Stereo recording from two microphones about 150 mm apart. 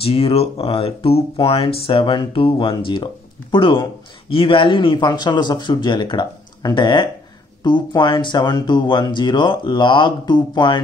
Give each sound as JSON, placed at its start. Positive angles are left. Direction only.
{"t": 0.0, "sound": "speech", "side_deg": 40}